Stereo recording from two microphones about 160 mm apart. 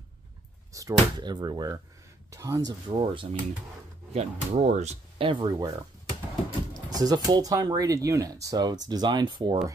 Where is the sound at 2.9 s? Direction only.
30° right (ahead or behind).